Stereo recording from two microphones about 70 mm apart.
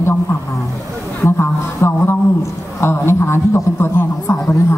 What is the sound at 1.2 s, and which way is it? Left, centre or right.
A man's voice, left.